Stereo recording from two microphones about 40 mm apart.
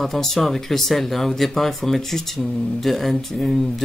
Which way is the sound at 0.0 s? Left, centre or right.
Centre.